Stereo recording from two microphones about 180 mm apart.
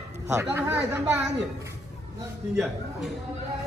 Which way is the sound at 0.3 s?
15° right (ahead or behind).